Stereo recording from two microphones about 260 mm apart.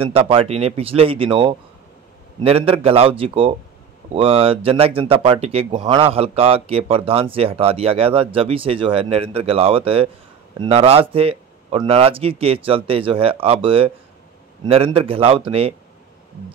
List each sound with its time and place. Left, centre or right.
0.0 s speech: right